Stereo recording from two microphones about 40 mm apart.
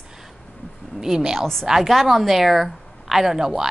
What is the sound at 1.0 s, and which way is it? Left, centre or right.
Speech, centre.